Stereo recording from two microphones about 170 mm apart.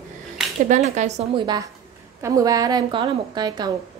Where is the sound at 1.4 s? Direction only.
25° right (ahead or behind).